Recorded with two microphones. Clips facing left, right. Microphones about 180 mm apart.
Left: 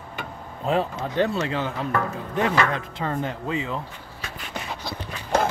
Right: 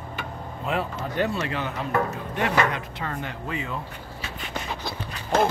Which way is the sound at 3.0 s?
25° left (ahead or behind).